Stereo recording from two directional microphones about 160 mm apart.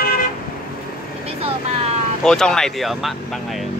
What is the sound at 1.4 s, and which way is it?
Vehicle, 40° right (ahead or behind).